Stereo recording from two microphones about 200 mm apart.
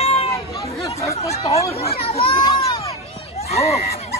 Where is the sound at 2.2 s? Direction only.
20° left (ahead or behind).